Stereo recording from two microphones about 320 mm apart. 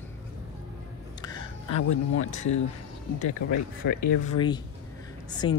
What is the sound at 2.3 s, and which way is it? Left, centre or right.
Speech, left.